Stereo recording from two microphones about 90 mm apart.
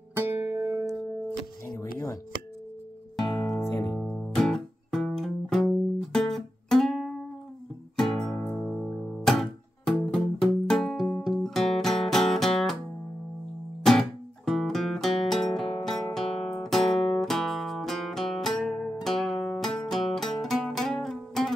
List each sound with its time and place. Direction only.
0.1 s music: 25° right (ahead or behind)
1.8 s a sound: 35° left (ahead or behind)
3.2 s music: 5° left (ahead or behind)
3.4 s music: 30° left (ahead or behind)
4.4 s music: 5° left (ahead or behind)
8.5 s music: 25° left (ahead or behind)
8.8 s music: 10° left (ahead or behind)
13.8 s music: 5° left (ahead or behind)